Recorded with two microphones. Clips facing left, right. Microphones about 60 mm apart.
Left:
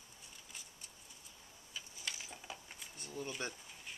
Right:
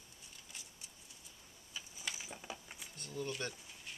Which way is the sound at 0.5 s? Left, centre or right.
Centre.